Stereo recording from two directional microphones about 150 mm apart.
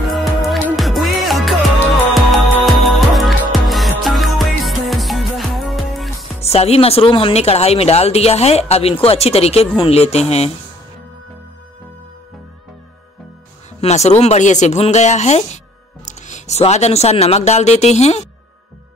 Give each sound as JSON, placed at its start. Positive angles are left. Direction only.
{"t": 0.1, "sound": "music", "side_deg": 0}
{"t": 6.4, "sound": "speech", "side_deg": 45}
{"t": 13.7, "sound": "speech", "side_deg": 45}